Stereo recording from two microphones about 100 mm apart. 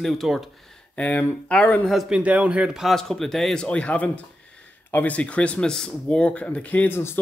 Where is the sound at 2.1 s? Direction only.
15° right (ahead or behind); by 7.1 s 20° left (ahead or behind).